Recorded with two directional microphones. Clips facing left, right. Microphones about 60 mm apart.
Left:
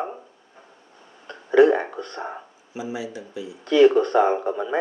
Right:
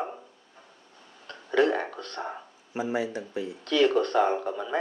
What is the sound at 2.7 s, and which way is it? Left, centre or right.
Speech, right.